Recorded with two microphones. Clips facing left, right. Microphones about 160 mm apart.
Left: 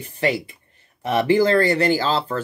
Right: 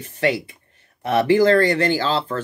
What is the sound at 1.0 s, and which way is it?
Speech, 10° left (ahead or behind).